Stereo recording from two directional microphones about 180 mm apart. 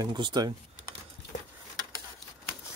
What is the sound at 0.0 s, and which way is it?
Speech, 25° right (ahead or behind).